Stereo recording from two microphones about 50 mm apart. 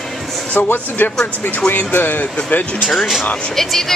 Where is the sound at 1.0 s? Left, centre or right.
Left.